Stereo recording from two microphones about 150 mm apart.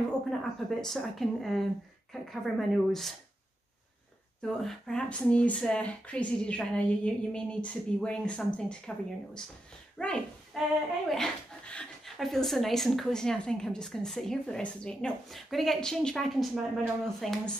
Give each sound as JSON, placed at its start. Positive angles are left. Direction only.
{"t": 0.4, "sound": "speech", "side_deg": 5}
{"t": 4.4, "sound": "speech", "side_deg": 5}